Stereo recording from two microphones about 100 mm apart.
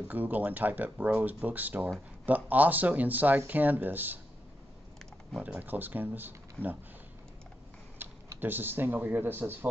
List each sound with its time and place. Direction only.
0.1 s speech: 15° right (ahead or behind)
5.4 s speech: 15° right (ahead or behind)
8.0 s speech: 20° right (ahead or behind)